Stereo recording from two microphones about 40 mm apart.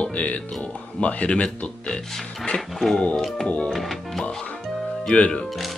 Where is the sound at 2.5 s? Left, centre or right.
Centre.